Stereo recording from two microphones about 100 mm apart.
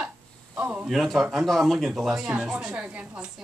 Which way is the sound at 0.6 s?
15° right (ahead or behind).